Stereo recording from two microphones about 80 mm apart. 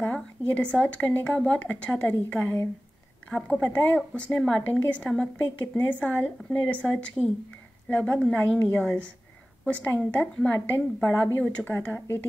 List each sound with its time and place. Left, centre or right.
0.0 s a woman's voice: centre
11.7 s a woman's voice: left